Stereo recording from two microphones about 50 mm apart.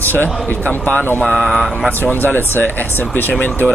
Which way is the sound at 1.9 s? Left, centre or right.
Left.